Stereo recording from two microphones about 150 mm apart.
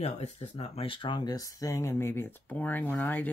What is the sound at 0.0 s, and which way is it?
Speech, 45° left (ahead or behind).